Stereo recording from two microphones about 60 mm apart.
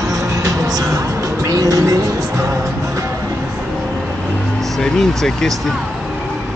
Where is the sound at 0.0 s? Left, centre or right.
Right.